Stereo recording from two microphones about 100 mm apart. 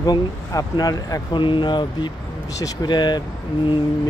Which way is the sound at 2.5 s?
40° left (ahead or behind).